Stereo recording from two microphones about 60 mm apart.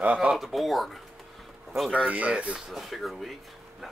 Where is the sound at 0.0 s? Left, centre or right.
Right.